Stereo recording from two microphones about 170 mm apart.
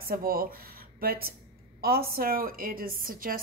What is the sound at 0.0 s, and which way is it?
A woman's voice, 60° right (ahead or behind).